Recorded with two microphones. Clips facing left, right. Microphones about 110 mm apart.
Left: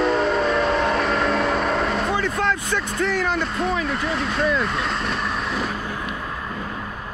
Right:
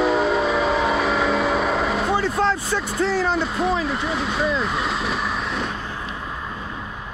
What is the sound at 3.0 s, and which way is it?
Music, 35° right (ahead or behind).